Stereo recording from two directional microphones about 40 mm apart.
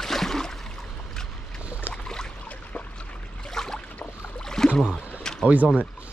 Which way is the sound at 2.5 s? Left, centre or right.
Left.